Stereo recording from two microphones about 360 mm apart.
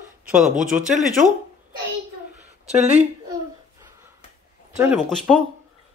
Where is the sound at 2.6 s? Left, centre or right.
Centre.